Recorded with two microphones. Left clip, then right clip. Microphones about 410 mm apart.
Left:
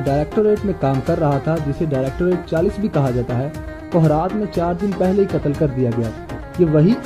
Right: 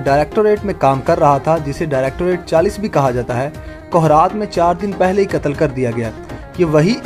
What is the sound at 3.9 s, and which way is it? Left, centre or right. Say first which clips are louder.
Speech: right 6 dB; right.